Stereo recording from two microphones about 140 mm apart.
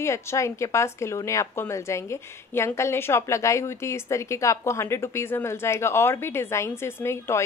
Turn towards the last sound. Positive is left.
turn(degrees=20)  # may be behind; listen again after turning